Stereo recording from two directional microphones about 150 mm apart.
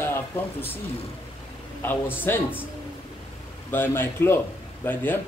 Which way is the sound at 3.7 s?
15° left (ahead or behind).